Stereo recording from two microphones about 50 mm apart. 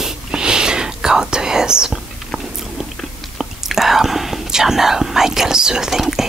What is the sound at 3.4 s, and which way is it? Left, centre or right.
Whispering, centre.